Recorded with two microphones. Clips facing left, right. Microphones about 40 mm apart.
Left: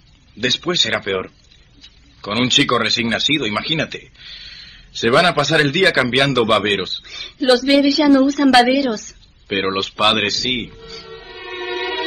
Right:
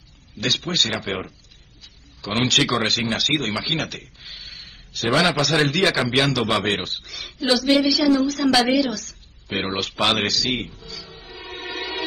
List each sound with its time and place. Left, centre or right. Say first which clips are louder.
0.4 s speech: left 4 dB; left
1.8 s a sound: left 4 dB; left
2.9 s a man's voice: left 4 dB; left
8.6 s a woman's voice: left 3 dB; left
8.9 s a sound: left 5 dB; left
10.1 s music: left 3 dB; left